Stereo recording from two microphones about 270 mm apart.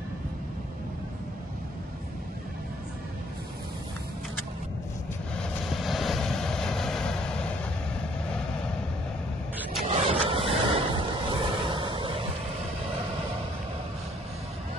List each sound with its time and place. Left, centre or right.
5.3 s vehicle: centre
9.8 s vehicle: right